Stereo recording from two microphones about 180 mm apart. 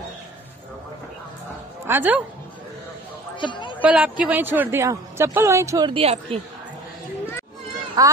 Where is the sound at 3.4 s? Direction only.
25° left (ahead or behind).